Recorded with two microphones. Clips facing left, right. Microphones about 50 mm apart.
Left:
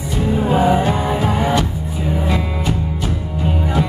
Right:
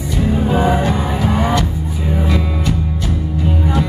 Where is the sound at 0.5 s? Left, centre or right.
Centre.